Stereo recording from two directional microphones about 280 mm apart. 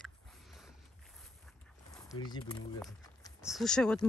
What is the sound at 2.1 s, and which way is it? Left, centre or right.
Speech, centre.